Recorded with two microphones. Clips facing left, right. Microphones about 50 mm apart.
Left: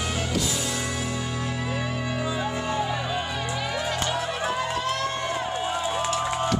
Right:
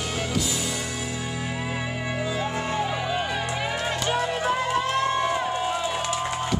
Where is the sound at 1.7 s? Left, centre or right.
Centre.